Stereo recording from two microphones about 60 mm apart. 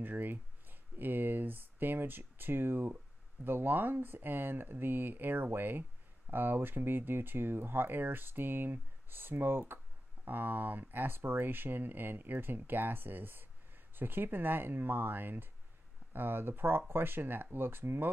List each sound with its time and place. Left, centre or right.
0.0 s speech: right